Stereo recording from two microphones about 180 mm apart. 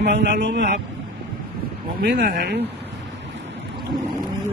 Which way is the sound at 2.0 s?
60° right (ahead or behind).